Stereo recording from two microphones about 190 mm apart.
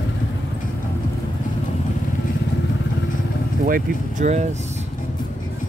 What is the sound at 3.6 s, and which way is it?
Speech, 45° right (ahead or behind).